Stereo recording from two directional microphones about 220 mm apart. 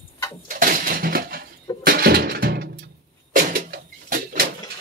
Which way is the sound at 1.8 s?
45° right (ahead or behind).